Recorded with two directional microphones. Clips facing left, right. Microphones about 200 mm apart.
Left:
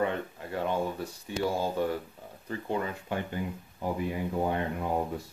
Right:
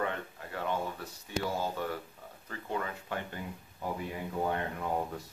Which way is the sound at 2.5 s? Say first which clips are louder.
Left 5 dB; 20° left (ahead or behind).